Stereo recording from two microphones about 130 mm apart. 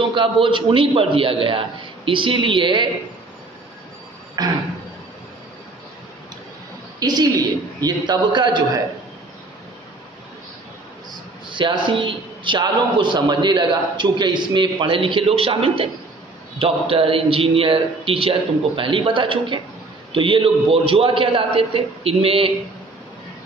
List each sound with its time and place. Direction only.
0.1 s a man's voice: 40° right (ahead or behind)
4.4 s a sound: 30° right (ahead or behind)
7.0 s a man's voice: 30° right (ahead or behind)
11.4 s a man's voice: 40° right (ahead or behind)